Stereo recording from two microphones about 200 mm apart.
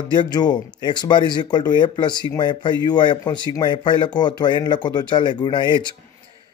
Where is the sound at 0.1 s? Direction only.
20° left (ahead or behind).